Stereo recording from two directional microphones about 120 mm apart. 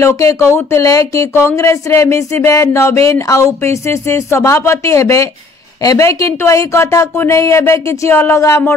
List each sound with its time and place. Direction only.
0.0 s speech: 25° left (ahead or behind)